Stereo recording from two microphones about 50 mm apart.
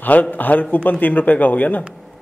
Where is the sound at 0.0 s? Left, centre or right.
Left.